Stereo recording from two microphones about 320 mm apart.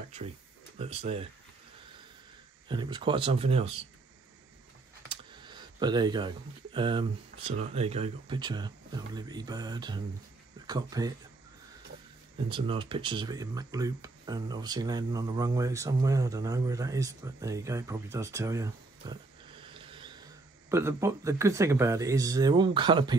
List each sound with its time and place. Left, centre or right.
0.7 s speech: centre
2.7 s speech: centre
5.1 s speech: centre
12.4 s speech: centre